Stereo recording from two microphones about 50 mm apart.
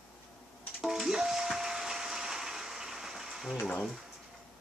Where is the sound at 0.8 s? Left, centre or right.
Centre.